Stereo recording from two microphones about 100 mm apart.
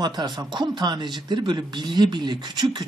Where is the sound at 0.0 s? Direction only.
45° right (ahead or behind).